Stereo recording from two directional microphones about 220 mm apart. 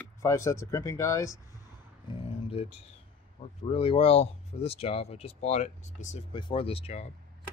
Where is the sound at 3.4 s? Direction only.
25° left (ahead or behind).